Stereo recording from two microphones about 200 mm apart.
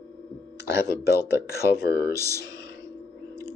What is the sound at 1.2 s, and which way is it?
Speech, 10° right (ahead or behind).